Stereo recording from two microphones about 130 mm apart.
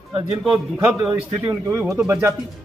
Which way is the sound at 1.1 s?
40° right (ahead or behind).